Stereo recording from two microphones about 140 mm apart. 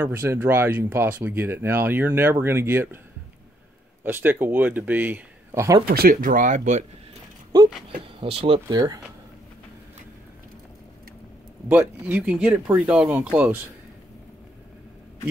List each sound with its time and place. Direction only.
0.0 s speech: 15° right (ahead or behind)
4.0 s speech: 15° right (ahead or behind)
5.9 s speech: 90° right; by 6.8 s 65° right (ahead or behind)
8.2 s speech: 40° right (ahead or behind)
8.6 s speech: 25° right (ahead or behind)
11.7 s speech: 10° right (ahead or behind)